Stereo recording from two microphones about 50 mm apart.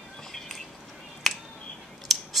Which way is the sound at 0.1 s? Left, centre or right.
Centre.